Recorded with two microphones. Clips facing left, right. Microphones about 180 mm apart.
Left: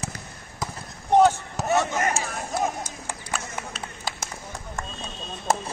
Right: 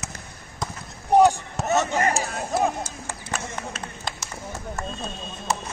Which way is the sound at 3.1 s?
15° left (ahead or behind).